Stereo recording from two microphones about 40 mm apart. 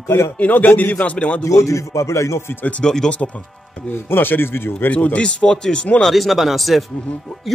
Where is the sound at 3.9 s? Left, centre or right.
Left.